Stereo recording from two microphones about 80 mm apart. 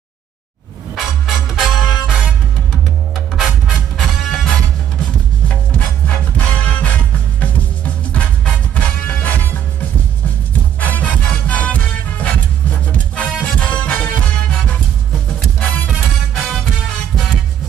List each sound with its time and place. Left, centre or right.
0.9 s music: centre
3.3 s music: centre
6.0 s music: centre
10.8 s music: centre
15.6 s music: left
15.9 s music: centre